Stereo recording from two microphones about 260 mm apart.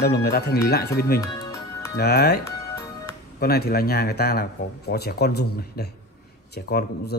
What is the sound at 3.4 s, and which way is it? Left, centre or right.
Speech, left.